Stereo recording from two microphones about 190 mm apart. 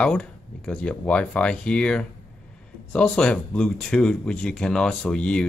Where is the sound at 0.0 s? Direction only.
5° left (ahead or behind).